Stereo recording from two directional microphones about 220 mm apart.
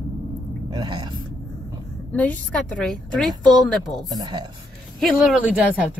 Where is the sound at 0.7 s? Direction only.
20° right (ahead or behind).